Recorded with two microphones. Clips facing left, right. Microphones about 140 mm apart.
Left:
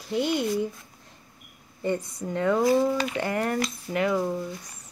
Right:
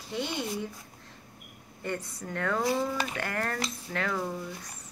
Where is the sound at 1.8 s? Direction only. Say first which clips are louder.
Left 7 dB; 15° left (ahead or behind).